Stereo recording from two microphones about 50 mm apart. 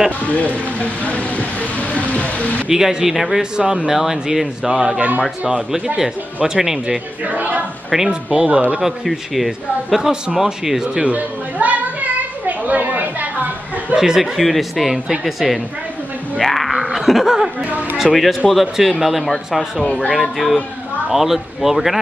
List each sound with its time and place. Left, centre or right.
0.2 s speech: left
2.7 s a man's voice: centre
3.5 s a man's voice: centre
3.9 s a man's voice: centre
7.2 s speech: right
8.1 s speech: right
8.8 s a man's voice: centre
11.1 s a sound: right
13.9 s a man's voice: centre
16.3 s a sound: centre
17.9 s a man's voice: centre
19.8 s speech: centre
20.1 s a man's voice: centre